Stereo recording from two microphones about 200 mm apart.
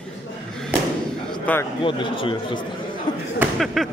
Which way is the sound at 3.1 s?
25° left (ahead or behind).